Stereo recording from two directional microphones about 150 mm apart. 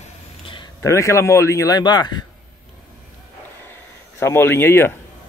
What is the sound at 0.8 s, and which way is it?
Speech, 20° left (ahead or behind).